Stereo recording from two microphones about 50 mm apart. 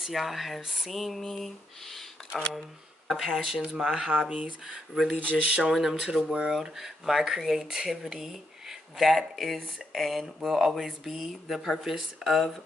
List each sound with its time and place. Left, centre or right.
0.0 s speech: centre
4.2 s speech: centre
5.1 s speech: right
5.6 s speech: centre